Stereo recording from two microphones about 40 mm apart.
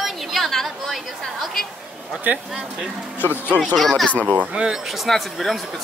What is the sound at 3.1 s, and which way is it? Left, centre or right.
Speech, left.